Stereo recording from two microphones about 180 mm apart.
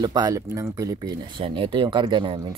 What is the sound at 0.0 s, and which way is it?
Speech, 20° right (ahead or behind).